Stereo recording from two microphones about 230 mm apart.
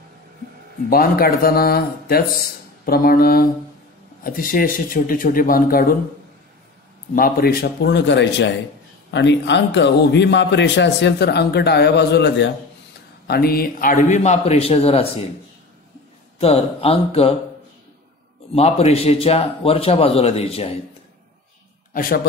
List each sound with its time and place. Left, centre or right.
0.8 s speech: left
7.2 s a man's voice: left
16.3 s a man's voice: left
18.5 s a man's voice: left